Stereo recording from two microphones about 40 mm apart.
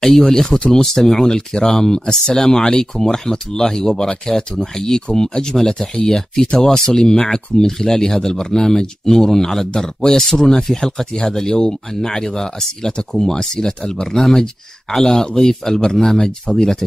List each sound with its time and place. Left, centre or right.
0.0 s speech: centre